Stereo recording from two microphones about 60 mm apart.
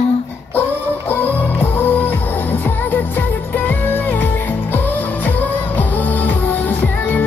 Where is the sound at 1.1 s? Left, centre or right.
Left.